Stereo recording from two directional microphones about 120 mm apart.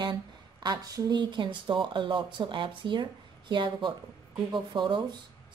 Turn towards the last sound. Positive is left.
turn(degrees=-40)  # may be behind; listen again after turning